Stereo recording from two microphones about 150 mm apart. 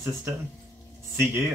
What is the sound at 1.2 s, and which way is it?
Speech, 15° right (ahead or behind).